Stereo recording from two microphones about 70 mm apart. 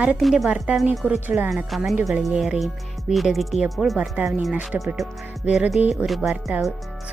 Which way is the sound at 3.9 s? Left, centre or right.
Centre.